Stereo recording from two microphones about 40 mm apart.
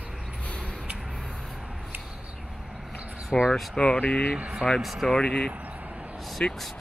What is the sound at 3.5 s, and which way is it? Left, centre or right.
Speech, centre.